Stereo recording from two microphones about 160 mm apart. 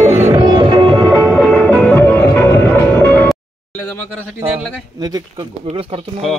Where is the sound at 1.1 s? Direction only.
15° right (ahead or behind).